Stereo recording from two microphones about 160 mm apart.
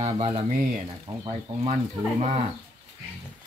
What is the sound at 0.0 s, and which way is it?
Speech, 35° right (ahead or behind).